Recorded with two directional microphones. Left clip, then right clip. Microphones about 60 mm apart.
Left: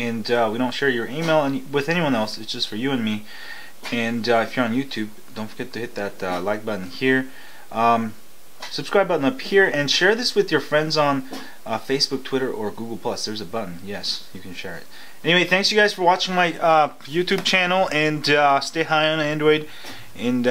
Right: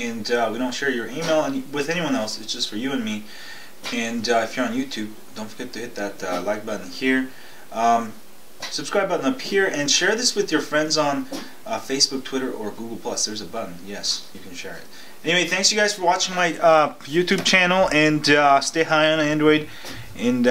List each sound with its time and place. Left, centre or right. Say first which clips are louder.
0.0 s speech: left 2 dB; right